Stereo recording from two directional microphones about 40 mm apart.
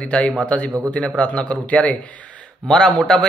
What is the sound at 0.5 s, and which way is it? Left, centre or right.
A man's voice, left.